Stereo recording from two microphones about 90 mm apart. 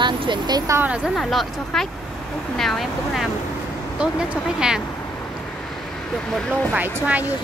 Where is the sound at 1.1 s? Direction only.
Centre (ahead or behind).